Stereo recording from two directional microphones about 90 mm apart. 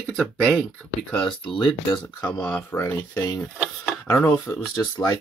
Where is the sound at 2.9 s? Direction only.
40° left (ahead or behind).